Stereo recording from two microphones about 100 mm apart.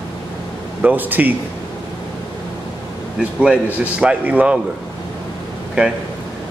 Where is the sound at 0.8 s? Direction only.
20° right (ahead or behind).